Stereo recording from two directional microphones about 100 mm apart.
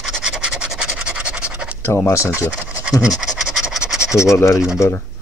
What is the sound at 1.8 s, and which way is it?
Speech, 25° left (ahead or behind).